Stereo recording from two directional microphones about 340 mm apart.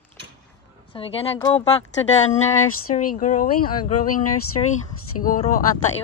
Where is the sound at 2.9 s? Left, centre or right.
Centre.